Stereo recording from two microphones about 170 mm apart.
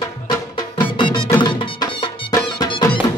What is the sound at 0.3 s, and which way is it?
Music, 25° left (ahead or behind).